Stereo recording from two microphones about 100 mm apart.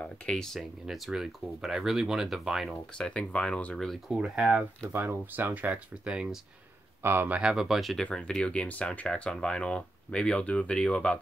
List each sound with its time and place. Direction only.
0.0 s speech: 5° left (ahead or behind)
3.1 s speech: 10° left (ahead or behind)
4.1 s speech: 10° right (ahead or behind)
7.0 s speech: 25° right (ahead or behind); by 11.1 s 10° left (ahead or behind)